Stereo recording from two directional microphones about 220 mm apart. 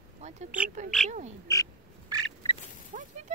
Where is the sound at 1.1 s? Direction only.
30° right (ahead or behind).